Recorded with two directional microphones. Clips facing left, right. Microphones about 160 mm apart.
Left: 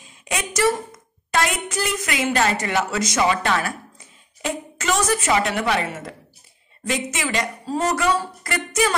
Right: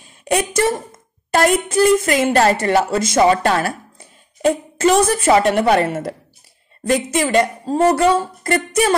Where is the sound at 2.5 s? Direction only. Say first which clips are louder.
Right 6 dB; 30° right (ahead or behind).